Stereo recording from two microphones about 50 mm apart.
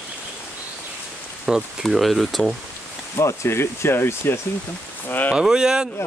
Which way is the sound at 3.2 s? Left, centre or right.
Left.